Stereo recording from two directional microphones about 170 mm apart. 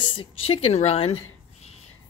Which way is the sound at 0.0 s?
30° left (ahead or behind).